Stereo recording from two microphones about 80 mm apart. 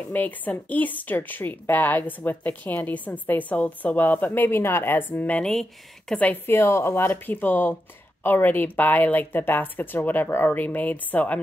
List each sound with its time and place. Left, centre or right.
0.1 s a woman's voice: left
5.5 s speech: centre
6.1 s a woman's voice: left